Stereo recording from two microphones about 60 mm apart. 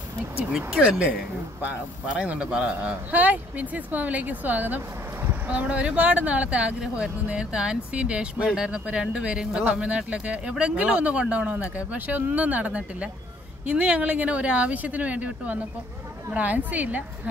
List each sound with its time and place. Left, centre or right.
0.7 s speech: centre
2.1 s speech: centre
5.5 s speech: right